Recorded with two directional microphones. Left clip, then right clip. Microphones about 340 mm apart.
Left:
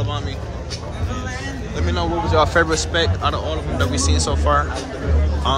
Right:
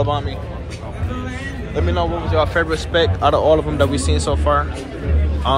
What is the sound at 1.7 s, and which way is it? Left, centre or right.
A man's voice, centre.